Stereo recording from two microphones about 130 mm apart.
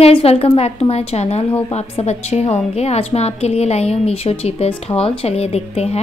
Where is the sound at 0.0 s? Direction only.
50° left (ahead or behind).